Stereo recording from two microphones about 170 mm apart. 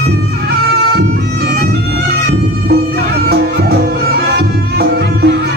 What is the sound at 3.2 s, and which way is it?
Music, 70° right (ahead or behind).